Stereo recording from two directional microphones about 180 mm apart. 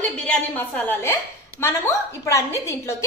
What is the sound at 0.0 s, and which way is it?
A woman's voice, 10° left (ahead or behind).